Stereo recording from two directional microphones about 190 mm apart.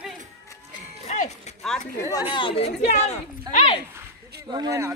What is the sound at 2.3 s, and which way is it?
Speech, 30° left (ahead or behind).